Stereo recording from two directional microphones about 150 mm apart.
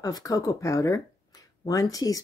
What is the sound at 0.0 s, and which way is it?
Speech, 25° left (ahead or behind).